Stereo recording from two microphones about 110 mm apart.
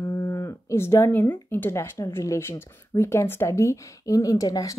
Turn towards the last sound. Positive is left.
turn(degrees=35)  # may be behind; listen again after turning